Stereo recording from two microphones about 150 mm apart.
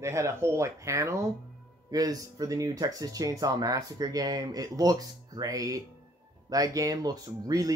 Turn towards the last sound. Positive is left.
turn(degrees=-25)  # may be behind; listen again after turning